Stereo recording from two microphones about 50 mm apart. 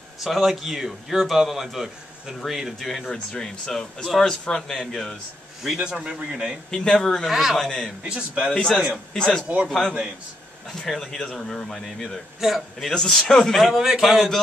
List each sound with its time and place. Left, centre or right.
0.2 s a man's voice: centre
3.1 s speech: centre
5.8 s a man's voice: centre
6.7 s speech: centre
7.2 s a man's voice: centre
7.5 s speech: centre
8.0 s a man's voice: right
8.5 s a man's voice: centre
12.9 s a man's voice: centre